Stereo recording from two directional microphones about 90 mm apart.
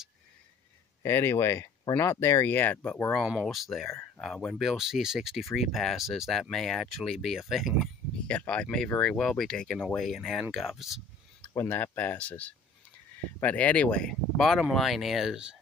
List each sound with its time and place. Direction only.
1.0 s speech: 30° left (ahead or behind)
3.4 s speech: centre (ahead or behind)
8.3 s speech: 15° left (ahead or behind); by 11.0 s 5° right (ahead or behind)
11.5 s speech: 25° left (ahead or behind); by 15.5 s 10° right (ahead or behind)